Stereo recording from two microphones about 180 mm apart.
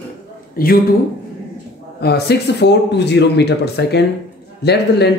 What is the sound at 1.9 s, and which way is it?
A man's voice, 65° left (ahead or behind).